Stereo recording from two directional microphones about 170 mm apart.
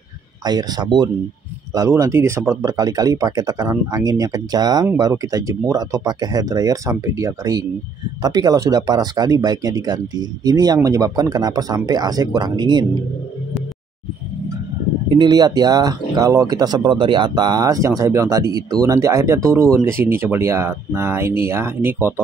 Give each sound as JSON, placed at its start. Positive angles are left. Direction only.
{"t": 0.5, "sound": "speech", "side_deg": -25}
{"t": 15.0, "sound": "speech", "side_deg": -25}